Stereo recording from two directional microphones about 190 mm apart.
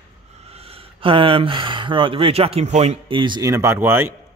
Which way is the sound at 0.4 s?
30° right (ahead or behind).